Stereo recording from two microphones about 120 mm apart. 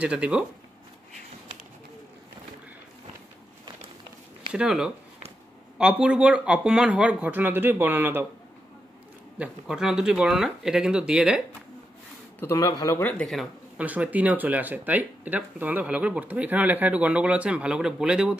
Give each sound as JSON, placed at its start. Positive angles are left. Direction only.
{"t": 0.0, "sound": "speech", "side_deg": -10}
{"t": 4.6, "sound": "speech", "side_deg": -5}
{"t": 9.4, "sound": "speech", "side_deg": -5}
{"t": 12.4, "sound": "a man's voice", "side_deg": 25}
{"t": 13.2, "sound": "speech", "side_deg": 0}
{"t": 13.7, "sound": "speech", "side_deg": -10}